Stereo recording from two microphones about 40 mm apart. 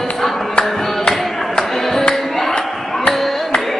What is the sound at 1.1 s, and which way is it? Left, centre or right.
Music, centre.